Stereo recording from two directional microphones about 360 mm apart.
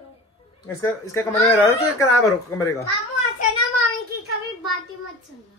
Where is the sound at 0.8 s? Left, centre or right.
Centre.